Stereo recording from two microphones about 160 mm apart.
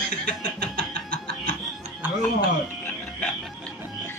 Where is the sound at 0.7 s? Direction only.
70° right (ahead or behind).